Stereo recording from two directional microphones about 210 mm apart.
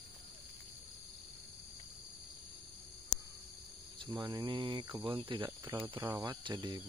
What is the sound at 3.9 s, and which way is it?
Cricket, 20° right (ahead or behind).